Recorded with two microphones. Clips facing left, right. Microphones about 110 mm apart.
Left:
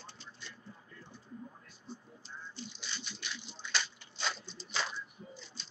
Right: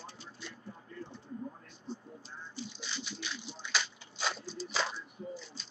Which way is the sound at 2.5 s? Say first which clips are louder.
Right 6 dB; 5° right (ahead or behind).